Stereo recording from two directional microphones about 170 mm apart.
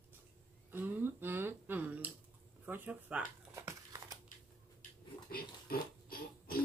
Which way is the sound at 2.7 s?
10° right (ahead or behind).